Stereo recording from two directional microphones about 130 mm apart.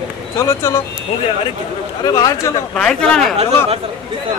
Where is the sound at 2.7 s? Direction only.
5° left (ahead or behind).